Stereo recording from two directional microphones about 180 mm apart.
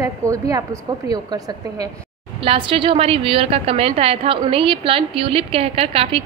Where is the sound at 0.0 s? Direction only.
20° right (ahead or behind).